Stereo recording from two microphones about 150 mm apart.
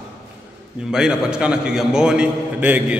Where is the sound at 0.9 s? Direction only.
5° right (ahead or behind).